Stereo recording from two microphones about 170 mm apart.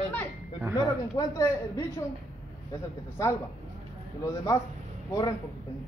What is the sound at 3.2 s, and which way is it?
Speech, 15° left (ahead or behind).